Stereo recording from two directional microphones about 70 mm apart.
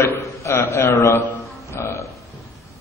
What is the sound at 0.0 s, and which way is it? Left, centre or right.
A man's voice, left.